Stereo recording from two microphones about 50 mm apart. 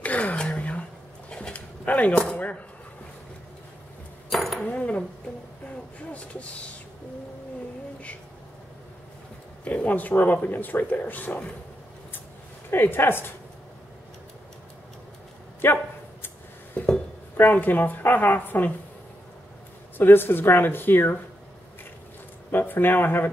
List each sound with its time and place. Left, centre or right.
0.0 s gasp: left
1.3 s dog: centre
1.9 s speech: left
4.3 s cutlery: centre
4.6 s speech: left
9.7 s speech: left
12.7 s speech: left
15.6 s dog: left
16.8 s a sound: left
17.4 s speech: left
20.0 s speech: left
22.5 s speech: left